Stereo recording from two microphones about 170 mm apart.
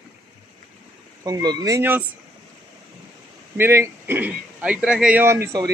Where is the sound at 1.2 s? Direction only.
20° right (ahead or behind).